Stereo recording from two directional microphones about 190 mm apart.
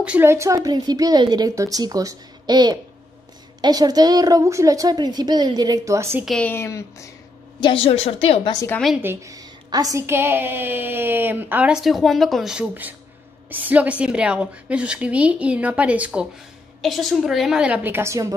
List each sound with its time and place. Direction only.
0.0 s a woman's voice: 10° right (ahead or behind)
6.2 s speech: 5° left (ahead or behind)
7.6 s a woman's voice: 30° left (ahead or behind)
8.5 s speech: 10° left (ahead or behind)
8.8 s a woman's voice: 5° right (ahead or behind)
9.1 s a woman's voice: 15° right (ahead or behind)